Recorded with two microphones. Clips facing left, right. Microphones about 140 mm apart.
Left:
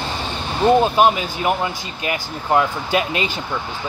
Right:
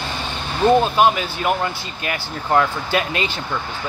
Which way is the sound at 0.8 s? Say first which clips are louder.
Left 1 dB; 15° left (ahead or behind).